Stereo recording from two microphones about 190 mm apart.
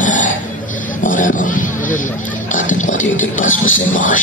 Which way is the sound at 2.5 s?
40° left (ahead or behind).